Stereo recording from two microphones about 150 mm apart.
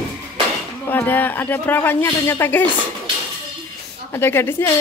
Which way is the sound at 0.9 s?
15° left (ahead or behind).